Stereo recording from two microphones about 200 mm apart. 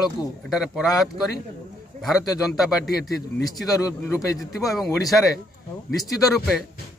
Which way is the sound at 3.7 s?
15° left (ahead or behind).